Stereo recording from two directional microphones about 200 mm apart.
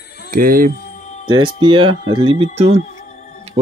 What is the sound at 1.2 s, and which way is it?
Speech, 25° right (ahead or behind).